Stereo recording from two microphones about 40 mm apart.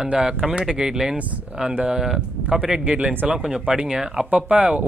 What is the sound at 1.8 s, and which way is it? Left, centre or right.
Speech, right.